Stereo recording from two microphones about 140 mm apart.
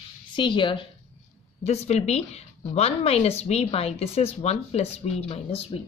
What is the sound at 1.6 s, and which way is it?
A woman's voice, 50° left (ahead or behind).